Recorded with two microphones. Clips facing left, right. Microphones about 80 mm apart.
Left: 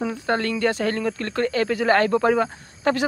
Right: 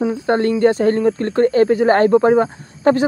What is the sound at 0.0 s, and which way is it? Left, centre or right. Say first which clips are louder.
Speech: right 7 dB; right.